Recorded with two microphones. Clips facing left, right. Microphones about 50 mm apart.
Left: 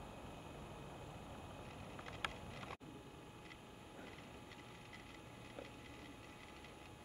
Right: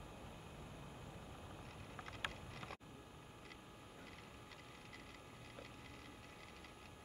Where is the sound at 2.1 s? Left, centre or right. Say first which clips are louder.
Left 1 dB; left.